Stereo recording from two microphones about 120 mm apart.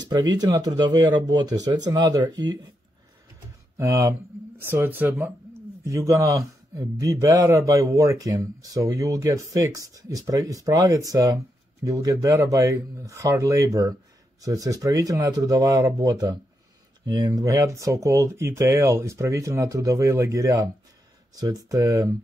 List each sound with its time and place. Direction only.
0.0 s speech: 35° right (ahead or behind)
3.7 s speech: 25° right (ahead or behind)